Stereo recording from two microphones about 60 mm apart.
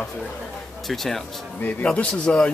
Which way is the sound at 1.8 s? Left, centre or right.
Centre.